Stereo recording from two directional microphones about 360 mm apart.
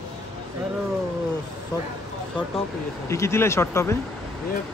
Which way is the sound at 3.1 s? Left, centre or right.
Centre.